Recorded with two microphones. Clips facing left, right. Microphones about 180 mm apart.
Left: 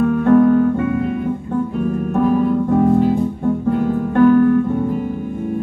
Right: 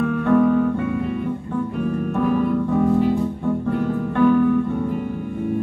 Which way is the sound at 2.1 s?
45° left (ahead or behind).